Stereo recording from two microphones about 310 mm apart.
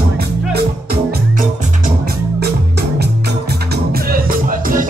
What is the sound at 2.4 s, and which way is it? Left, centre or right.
Music, right.